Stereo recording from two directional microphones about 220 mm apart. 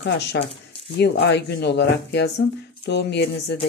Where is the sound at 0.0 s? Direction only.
50° left (ahead or behind).